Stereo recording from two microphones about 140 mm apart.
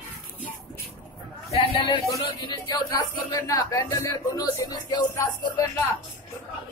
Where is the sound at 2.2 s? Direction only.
30° left (ahead or behind).